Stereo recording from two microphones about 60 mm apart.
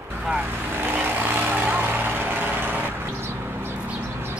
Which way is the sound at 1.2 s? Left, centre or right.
Right.